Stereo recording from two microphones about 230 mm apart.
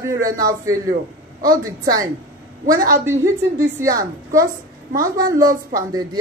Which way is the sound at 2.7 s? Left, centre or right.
Centre.